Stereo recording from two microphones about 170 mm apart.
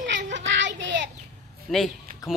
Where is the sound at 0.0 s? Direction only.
90° right.